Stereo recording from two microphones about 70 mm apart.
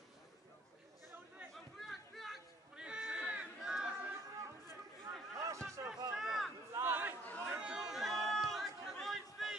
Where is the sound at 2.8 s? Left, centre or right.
Centre.